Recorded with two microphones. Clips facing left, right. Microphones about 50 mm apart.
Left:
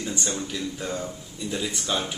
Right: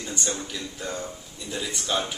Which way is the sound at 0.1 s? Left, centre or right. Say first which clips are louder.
Right 2 dB; centre.